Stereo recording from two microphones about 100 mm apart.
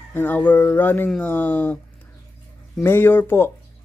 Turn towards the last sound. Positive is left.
turn(degrees=20)  # may be behind; listen again after turning